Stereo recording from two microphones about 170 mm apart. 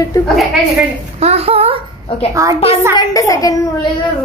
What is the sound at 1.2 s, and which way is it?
Speech, 35° right (ahead or behind).